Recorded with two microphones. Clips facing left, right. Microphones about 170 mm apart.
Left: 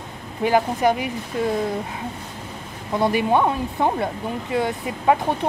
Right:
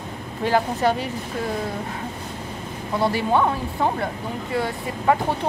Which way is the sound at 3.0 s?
20° left (ahead or behind).